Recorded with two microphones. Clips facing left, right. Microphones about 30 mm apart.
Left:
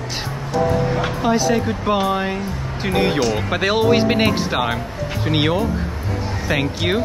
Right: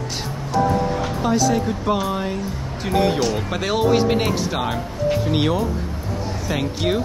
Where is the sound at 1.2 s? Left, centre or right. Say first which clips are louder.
Left 1 dB; left.